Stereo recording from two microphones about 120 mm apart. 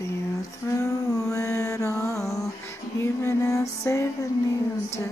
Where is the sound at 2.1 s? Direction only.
Centre (ahead or behind).